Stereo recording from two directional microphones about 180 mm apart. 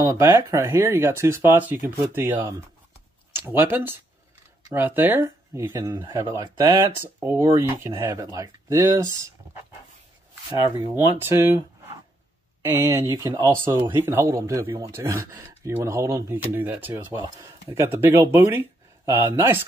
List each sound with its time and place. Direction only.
0.0 s speech: 20° right (ahead or behind)
10.8 s speech: 10° right (ahead or behind)
12.6 s speech: 15° right (ahead or behind)